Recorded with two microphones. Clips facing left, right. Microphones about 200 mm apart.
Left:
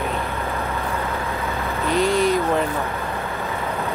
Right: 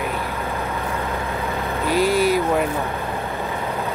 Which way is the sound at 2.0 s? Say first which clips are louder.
Right 1 dB; 5° right (ahead or behind).